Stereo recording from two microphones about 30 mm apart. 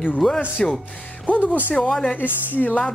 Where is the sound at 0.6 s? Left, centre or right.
Left.